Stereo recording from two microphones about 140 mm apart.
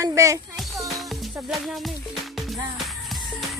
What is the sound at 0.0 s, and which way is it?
Music, 20° right (ahead or behind).